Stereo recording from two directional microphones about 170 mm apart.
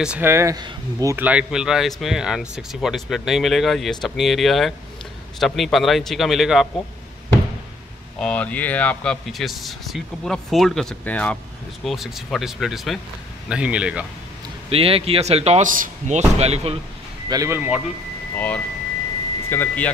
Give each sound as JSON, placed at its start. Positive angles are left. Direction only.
{"t": 0.0, "sound": "speech", "side_deg": -10}
{"t": 8.2, "sound": "speech", "side_deg": 5}
{"t": 14.7, "sound": "a man's voice", "side_deg": -35}
{"t": 17.3, "sound": "speech", "side_deg": -20}
{"t": 17.6, "sound": "speech", "side_deg": -5}
{"t": 18.3, "sound": "speech", "side_deg": 10}